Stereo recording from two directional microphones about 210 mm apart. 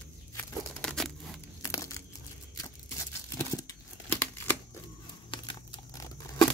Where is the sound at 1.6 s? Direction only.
15° left (ahead or behind).